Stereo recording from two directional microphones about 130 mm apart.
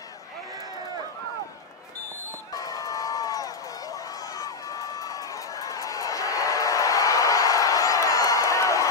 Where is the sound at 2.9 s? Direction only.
25° left (ahead or behind).